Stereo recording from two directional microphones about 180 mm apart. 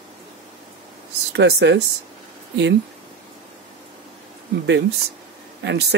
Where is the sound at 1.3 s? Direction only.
70° right (ahead or behind).